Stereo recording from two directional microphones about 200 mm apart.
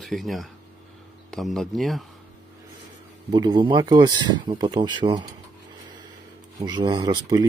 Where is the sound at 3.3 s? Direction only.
20° right (ahead or behind).